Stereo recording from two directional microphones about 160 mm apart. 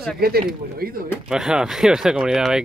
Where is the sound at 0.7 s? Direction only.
65° right (ahead or behind).